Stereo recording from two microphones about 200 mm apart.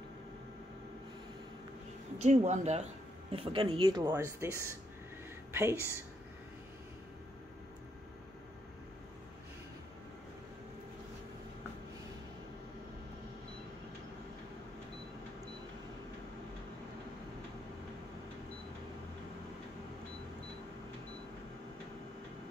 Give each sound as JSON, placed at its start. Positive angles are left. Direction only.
{"t": 2.1, "sound": "speech", "side_deg": -35}